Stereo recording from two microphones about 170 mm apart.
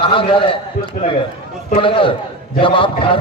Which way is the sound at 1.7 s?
30° left (ahead or behind).